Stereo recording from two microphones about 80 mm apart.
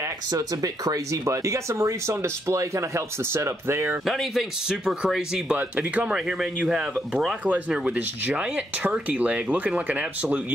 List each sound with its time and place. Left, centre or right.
0.3 s speech: right
4.0 s speech: centre
6.1 s speech: centre
7.4 s speech: centre